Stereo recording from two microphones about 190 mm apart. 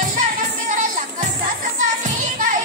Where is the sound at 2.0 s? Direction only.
45° right (ahead or behind).